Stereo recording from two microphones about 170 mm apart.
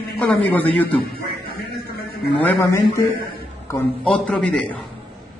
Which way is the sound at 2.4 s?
10° left (ahead or behind).